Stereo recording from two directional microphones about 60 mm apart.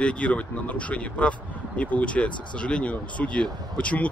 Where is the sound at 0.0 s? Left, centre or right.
Left.